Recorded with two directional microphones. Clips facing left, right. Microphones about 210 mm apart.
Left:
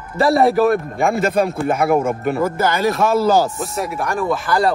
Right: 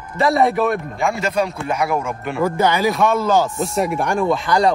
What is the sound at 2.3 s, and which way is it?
Speech, centre (ahead or behind).